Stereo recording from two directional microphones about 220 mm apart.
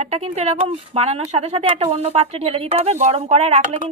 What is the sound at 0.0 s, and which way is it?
Speech, 30° right (ahead or behind).